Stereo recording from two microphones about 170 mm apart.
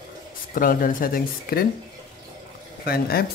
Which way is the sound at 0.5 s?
55° left (ahead or behind).